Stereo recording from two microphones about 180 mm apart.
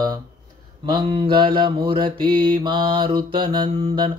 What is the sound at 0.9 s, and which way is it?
Mantra, 30° right (ahead or behind).